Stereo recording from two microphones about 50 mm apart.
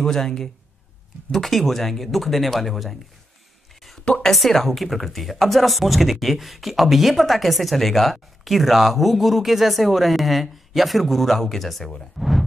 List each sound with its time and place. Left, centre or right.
0.0 s speech: centre
4.0 s a woman's voice: centre
4.3 s speech: centre
12.2 s a sound: centre